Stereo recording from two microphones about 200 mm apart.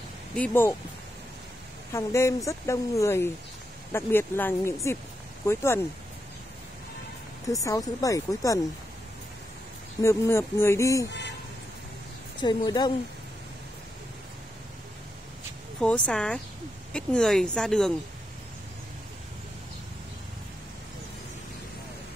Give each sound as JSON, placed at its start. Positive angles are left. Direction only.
{"t": 0.4, "sound": "speech", "side_deg": 10}
{"t": 1.9, "sound": "speech", "side_deg": 15}
{"t": 7.5, "sound": "speech", "side_deg": 15}
{"t": 10.0, "sound": "speech", "side_deg": 15}
{"t": 12.4, "sound": "a woman's voice", "side_deg": 20}
{"t": 15.8, "sound": "speech", "side_deg": 5}